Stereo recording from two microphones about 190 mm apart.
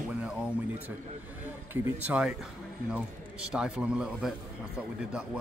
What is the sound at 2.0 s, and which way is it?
A man's voice, 5° right (ahead or behind).